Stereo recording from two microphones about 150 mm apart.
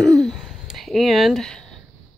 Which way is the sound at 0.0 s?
Centre (ahead or behind).